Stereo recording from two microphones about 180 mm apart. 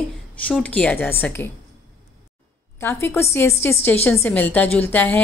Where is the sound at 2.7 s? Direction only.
15° left (ahead or behind).